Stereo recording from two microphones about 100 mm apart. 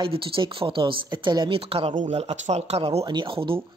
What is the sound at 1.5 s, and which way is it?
Speech, 75° right (ahead or behind).